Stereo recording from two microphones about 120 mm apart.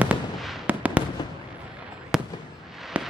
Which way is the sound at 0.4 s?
Centre (ahead or behind).